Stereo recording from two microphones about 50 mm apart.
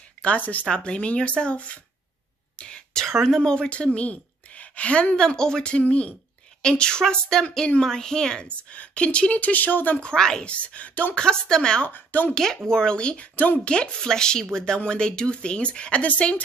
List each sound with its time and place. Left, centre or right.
0.4 s a woman's voice: left
0.7 s speech: centre
2.5 s a sound: centre
3.3 s speech: centre; by 9.9 s left
9.9 s speech: centre
10.5 s speech: left
11.1 s speech: centre
11.9 s a woman's voice: left
12.6 s speech: centre